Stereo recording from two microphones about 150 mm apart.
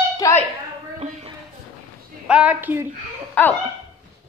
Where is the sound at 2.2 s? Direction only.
10° right (ahead or behind).